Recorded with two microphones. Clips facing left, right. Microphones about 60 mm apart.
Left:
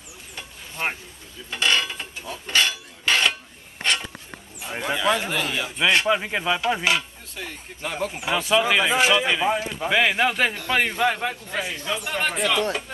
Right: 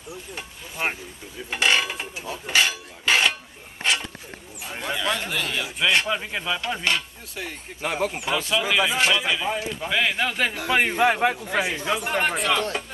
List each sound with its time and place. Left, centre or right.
0.4 s a sound: centre
4.7 s a man's voice: centre
7.3 s a man's voice: centre
8.2 s a man's voice: centre
10.6 s a man's voice: centre
11.1 s a man's voice: centre
12.4 s a man's voice: centre